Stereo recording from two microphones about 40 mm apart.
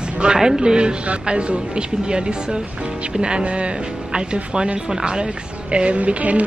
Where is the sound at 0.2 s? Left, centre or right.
Right.